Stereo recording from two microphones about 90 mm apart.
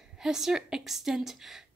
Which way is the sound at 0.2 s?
5° right (ahead or behind).